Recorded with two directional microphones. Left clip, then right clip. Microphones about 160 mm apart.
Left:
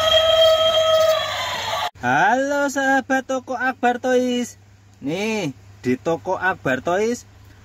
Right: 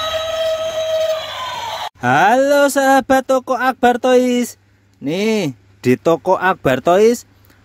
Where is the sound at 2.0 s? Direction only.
55° right (ahead or behind).